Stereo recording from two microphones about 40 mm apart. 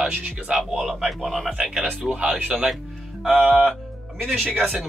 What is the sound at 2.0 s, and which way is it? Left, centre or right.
Speech, right.